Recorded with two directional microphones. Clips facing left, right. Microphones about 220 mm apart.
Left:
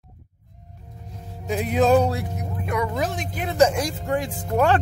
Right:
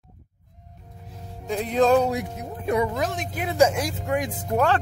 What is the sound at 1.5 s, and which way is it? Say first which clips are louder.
Music: left 1 dB; 10° left (ahead or behind).